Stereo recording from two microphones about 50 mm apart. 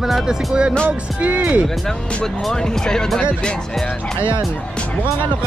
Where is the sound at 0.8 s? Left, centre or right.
Right.